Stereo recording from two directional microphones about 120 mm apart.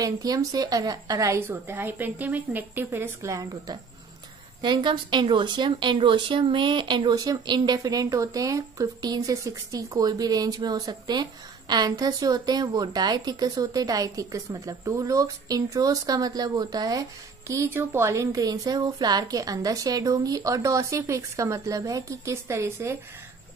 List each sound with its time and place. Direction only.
0.0 s speech: 30° right (ahead or behind)
1.5 s a woman's voice: 20° right (ahead or behind)
4.6 s speech: 40° right (ahead or behind); by 22.9 s 25° right (ahead or behind)